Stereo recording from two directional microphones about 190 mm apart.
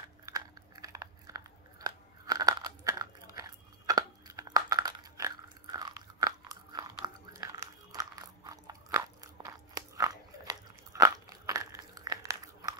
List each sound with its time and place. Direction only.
0.2 s crunch: 20° right (ahead or behind)
7.3 s biting: 15° right (ahead or behind)